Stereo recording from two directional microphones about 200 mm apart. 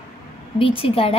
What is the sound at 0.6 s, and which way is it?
Speech, 25° left (ahead or behind).